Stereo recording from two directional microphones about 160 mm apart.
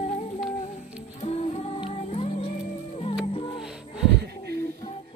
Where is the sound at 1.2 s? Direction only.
40° left (ahead or behind).